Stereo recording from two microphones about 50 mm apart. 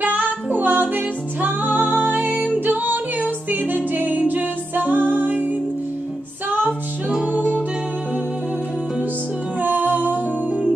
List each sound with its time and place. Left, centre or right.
0.0 s music: right
7.3 s music: centre
9.6 s music: right